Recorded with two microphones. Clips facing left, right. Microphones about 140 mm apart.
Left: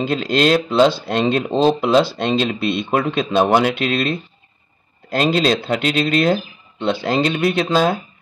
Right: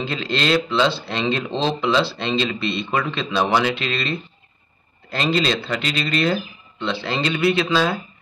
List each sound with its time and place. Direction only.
0.0 s speech: 45° left (ahead or behind)
5.2 s speech: 50° left (ahead or behind)